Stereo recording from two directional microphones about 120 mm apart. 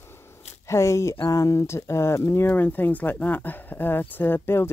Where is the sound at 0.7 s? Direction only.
25° left (ahead or behind).